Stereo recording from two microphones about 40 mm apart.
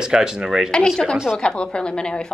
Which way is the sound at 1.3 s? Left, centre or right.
Left.